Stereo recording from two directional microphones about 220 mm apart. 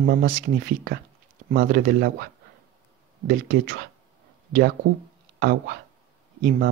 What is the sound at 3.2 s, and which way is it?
Speech, 50° right (ahead or behind).